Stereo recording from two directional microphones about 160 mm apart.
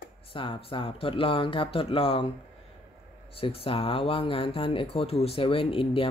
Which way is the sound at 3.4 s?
35° left (ahead or behind).